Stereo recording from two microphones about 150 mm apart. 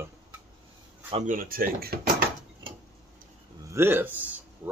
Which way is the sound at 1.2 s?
70° right (ahead or behind).